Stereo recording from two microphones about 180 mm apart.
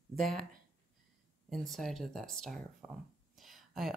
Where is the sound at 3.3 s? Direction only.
Centre (ahead or behind).